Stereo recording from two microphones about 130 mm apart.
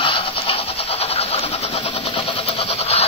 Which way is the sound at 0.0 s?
45° left (ahead or behind).